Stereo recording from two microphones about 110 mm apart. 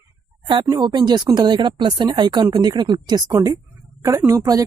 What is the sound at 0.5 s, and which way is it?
Speech, 40° right (ahead or behind).